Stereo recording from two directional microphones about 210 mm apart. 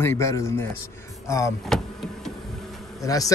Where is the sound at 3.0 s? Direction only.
15° left (ahead or behind).